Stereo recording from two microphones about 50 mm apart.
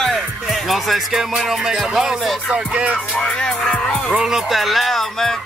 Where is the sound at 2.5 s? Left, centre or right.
Right.